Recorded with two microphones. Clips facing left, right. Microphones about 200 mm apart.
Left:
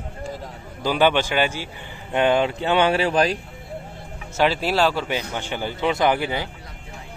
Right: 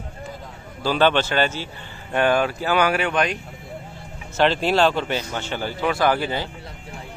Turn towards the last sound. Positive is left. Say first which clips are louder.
# even
turn(degrees=15)  # may be behind; listen again after turning